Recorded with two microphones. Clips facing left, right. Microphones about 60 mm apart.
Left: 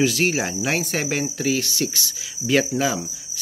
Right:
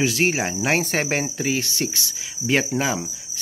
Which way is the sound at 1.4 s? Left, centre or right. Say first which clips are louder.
Left 1 dB; right.